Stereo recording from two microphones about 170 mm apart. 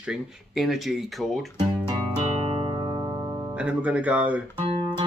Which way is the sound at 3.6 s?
10° right (ahead or behind).